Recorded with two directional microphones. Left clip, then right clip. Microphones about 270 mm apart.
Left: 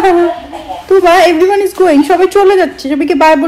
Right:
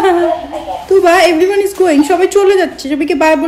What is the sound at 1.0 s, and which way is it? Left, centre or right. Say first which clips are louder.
A woman's voice: left 2 dB; centre.